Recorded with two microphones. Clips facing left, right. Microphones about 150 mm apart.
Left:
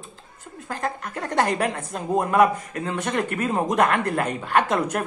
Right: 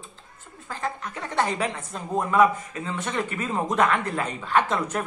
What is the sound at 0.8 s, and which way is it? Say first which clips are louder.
Speech: left 2 dB; 45° left (ahead or behind).